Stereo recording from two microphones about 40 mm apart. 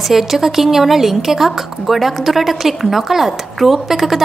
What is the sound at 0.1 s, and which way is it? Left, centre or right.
A woman's voice, centre.